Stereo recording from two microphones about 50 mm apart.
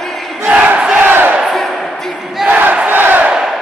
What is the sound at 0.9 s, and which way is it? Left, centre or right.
Crowd, right.